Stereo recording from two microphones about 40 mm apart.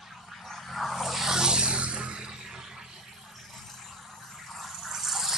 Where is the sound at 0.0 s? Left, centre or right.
Centre.